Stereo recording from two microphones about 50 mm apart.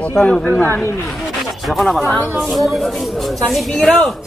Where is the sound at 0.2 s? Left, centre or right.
Left.